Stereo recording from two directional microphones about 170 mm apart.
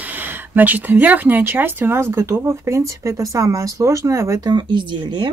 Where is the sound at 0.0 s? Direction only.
10° right (ahead or behind).